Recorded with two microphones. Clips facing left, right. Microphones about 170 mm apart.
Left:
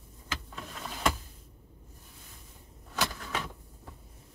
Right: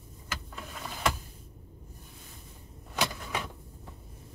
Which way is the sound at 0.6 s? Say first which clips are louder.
Even; centre (ahead or behind).